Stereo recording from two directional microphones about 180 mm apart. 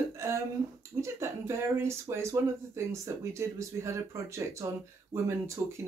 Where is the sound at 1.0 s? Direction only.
15° right (ahead or behind).